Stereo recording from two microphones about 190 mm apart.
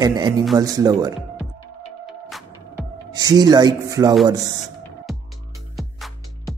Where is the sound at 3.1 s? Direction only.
20° right (ahead or behind).